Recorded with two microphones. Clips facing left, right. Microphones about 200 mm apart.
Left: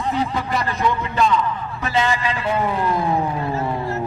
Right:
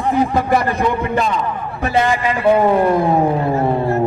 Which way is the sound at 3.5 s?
60° right (ahead or behind).